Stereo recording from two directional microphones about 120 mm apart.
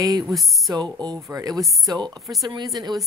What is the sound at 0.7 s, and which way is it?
Speech, 35° right (ahead or behind).